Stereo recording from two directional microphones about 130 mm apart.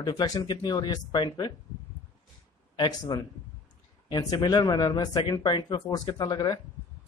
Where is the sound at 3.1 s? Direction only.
30° left (ahead or behind).